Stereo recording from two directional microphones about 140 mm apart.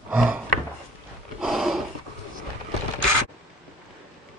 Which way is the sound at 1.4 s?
Centre (ahead or behind).